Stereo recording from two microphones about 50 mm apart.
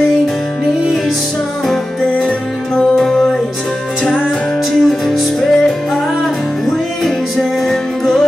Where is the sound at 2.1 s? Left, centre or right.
Left.